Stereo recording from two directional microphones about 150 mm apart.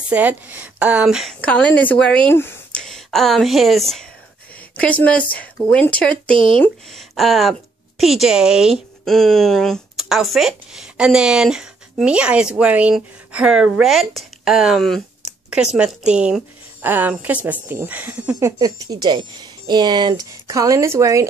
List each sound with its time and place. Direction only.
0.1 s a woman's voice: 10° right (ahead or behind)
1.4 s speech: 10° left (ahead or behind)
2.8 s a woman's voice: centre (ahead or behind)
18.3 s speech: 25° right (ahead or behind)